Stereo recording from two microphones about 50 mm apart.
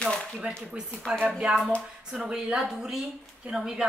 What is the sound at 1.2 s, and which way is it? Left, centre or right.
A woman's voice, centre.